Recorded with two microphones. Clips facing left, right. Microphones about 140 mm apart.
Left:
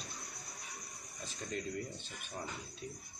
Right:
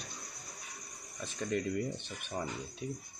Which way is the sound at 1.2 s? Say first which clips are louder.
Right 7 dB; 65° right (ahead or behind).